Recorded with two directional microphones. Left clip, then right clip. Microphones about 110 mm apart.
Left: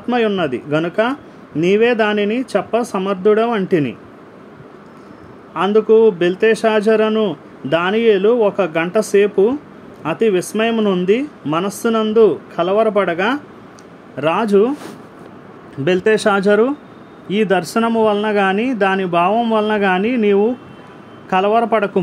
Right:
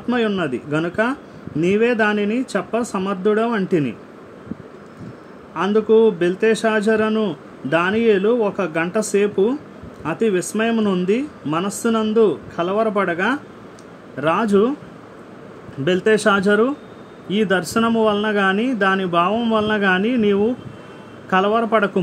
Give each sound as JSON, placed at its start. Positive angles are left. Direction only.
{"t": 0.1, "sound": "speech", "side_deg": 50}
{"t": 5.5, "sound": "speech", "side_deg": 55}
{"t": 15.8, "sound": "speech", "side_deg": 40}